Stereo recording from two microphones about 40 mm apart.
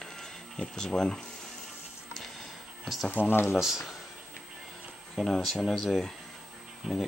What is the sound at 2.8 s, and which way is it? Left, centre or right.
Speech, centre.